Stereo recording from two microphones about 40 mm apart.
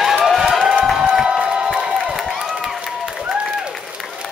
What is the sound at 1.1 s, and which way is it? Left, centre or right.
Music, centre.